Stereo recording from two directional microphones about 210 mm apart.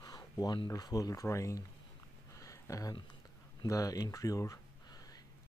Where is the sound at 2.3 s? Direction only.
15° left (ahead or behind).